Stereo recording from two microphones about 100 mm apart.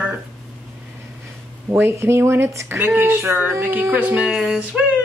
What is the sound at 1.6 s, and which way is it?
Speech, 20° right (ahead or behind).